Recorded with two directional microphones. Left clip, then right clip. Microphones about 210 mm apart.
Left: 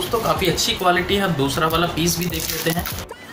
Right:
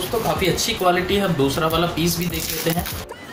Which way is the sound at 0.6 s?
Centre (ahead or behind).